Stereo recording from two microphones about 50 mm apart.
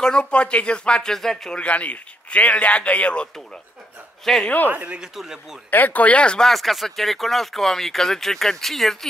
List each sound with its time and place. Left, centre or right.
0.0 s a man's voice: left
1.1 s speech: centre
1.6 s a man's voice: left
4.2 s a man's voice: centre
4.6 s speech: right
5.1 s speech: centre
5.7 s speech: left
6.4 s speech: centre